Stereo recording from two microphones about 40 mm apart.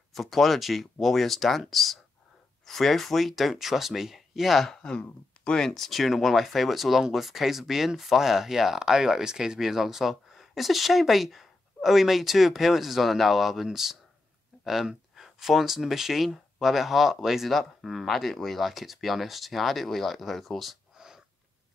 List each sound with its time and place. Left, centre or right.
0.1 s speech: centre
4.8 s speech: left
5.7 s speech: centre